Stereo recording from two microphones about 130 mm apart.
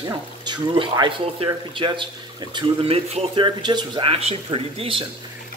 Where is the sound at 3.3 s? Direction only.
35° right (ahead or behind).